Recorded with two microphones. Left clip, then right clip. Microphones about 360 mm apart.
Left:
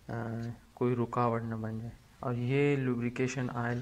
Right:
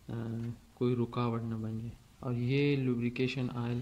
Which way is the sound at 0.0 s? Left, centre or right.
Centre.